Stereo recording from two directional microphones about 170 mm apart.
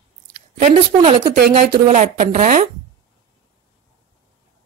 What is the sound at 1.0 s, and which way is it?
Speech, 30° right (ahead or behind).